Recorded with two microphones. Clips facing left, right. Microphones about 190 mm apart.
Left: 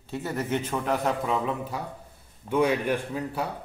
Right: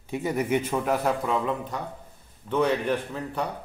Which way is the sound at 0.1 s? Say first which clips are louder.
Right 3 dB; 15° right (ahead or behind).